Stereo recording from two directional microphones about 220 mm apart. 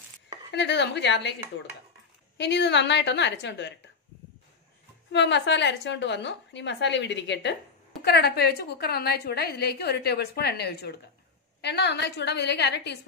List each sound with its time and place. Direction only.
0.5 s a woman's voice: 50° left (ahead or behind)
5.1 s a woman's voice: 55° left (ahead or behind)